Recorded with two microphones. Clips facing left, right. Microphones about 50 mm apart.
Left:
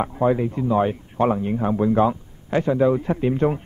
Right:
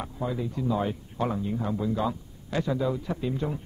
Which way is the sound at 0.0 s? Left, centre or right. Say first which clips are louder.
Left 11 dB; left.